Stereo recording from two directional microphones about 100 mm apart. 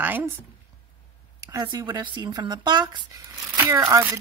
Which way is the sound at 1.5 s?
45° right (ahead or behind).